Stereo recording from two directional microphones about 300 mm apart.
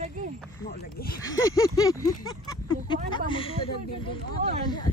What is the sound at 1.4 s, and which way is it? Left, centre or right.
Speech, centre.